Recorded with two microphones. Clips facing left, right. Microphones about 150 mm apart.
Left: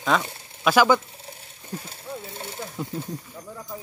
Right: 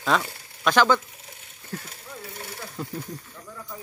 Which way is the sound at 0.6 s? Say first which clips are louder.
Left 2 dB; 10° left (ahead or behind).